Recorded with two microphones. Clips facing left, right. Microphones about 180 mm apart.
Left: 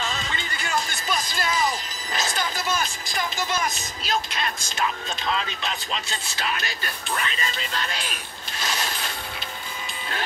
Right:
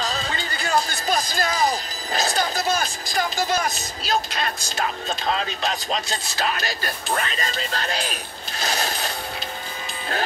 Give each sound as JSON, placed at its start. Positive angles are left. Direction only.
{"t": 0.0, "sound": "speech", "side_deg": -35}